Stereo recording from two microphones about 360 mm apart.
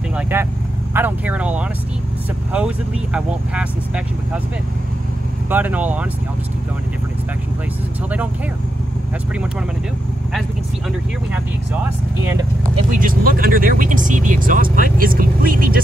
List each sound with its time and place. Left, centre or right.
0.9 s speech: centre
5.5 s speech: centre
13.0 s speech: right